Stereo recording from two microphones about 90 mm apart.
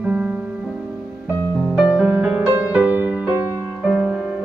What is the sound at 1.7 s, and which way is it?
Music, 5° right (ahead or behind).